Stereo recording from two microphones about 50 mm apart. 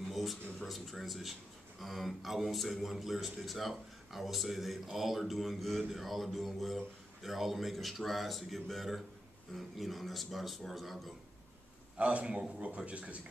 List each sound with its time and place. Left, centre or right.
0.1 s speech: centre
12.0 s a man's voice: right